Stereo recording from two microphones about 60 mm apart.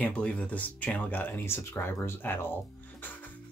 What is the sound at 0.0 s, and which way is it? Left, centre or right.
Speech, left.